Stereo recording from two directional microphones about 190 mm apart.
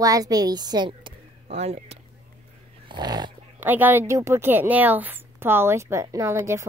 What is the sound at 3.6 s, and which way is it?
A woman's voice, 10° right (ahead or behind).